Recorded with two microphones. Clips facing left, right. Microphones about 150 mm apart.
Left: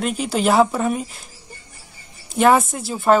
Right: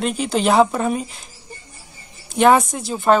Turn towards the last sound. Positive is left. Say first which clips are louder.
# even
turn(degrees=5)  # may be behind; listen again after turning